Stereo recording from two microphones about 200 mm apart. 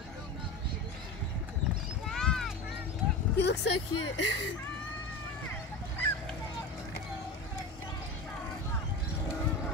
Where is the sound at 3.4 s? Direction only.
60° left (ahead or behind).